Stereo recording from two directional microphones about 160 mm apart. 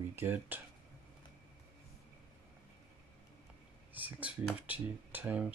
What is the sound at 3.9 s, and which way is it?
Speech, 10° right (ahead or behind).